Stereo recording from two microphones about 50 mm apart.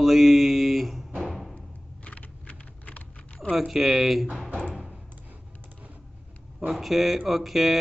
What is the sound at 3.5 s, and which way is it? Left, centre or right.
Speech, centre.